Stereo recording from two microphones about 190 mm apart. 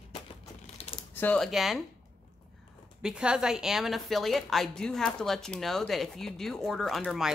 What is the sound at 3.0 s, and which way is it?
A woman's voice, 5° right (ahead or behind).